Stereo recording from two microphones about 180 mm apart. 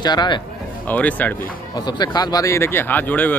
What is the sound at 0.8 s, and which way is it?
Speech, 10° left (ahead or behind).